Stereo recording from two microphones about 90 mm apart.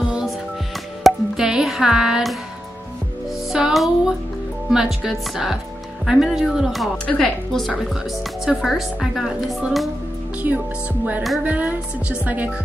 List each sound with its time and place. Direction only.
1.0 s music: 5° right (ahead or behind)
3.4 s speech: 5° right (ahead or behind)
10.4 s music: 20° right (ahead or behind)
11.4 s speech: 15° right (ahead or behind)